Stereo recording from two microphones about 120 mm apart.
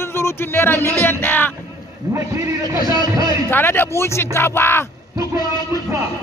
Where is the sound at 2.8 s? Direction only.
35° left (ahead or behind).